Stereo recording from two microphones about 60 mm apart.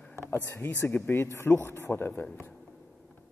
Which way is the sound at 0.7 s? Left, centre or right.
Left.